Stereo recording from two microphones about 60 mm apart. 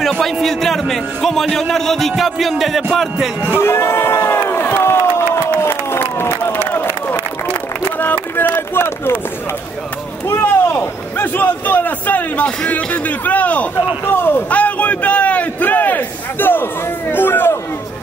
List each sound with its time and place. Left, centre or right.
0.2 s a man's voice: centre
3.5 s crowd: left
5.6 s a sound: left
6.7 s run: left
8.0 s speech: left
10.8 s a man's voice: left
14.0 s speech: left
14.5 s a sound: left
17.1 s speech: left